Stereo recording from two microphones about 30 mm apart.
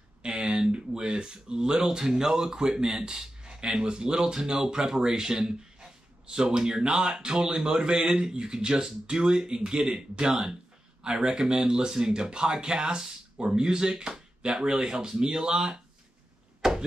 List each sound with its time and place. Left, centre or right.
0.5 s speech: right
4.1 s speech: centre
16.6 s a sound: centre